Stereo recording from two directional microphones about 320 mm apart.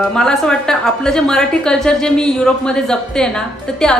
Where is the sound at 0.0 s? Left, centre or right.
Centre.